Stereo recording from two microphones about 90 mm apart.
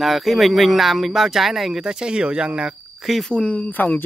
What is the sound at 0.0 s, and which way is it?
Speech, centre (ahead or behind).